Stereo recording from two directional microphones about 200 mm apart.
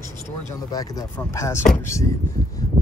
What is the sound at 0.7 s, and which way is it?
Speech, 15° left (ahead or behind).